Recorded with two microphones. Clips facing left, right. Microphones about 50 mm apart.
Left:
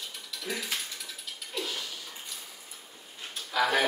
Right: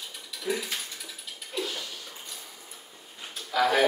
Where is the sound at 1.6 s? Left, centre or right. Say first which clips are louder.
Right 2 dB; centre.